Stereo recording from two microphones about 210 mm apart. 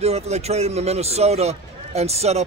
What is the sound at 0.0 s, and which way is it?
A man's voice, 30° right (ahead or behind).